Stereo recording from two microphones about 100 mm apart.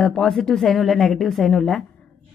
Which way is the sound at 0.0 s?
5° left (ahead or behind).